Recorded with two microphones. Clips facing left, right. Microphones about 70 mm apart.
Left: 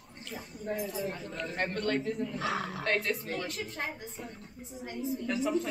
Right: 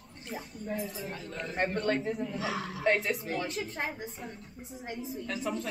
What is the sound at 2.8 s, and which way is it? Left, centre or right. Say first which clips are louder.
Speech: right 6 dB; centre.